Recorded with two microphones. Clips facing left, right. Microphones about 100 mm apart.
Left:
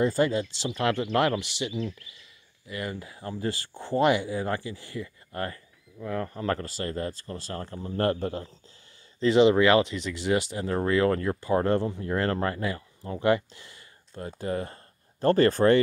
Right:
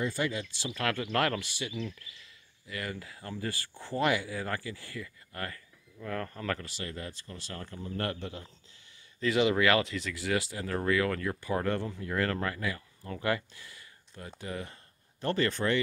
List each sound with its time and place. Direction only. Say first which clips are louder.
0.0 s speech: left 8 dB; 35° left (ahead or behind); by 1.7 s 20° left (ahead or behind)
2.7 s speech: left 4 dB; 20° left (ahead or behind)
5.9 s speech: left 5 dB; 15° left (ahead or behind)
6.4 s speech: left 6 dB; 35° left (ahead or behind)
9.2 s speech: left 7 dB; 25° left (ahead or behind); by 15.8 s 40° left (ahead or behind)